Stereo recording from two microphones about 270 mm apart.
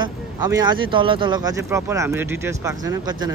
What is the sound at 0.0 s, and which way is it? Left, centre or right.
Speech, centre.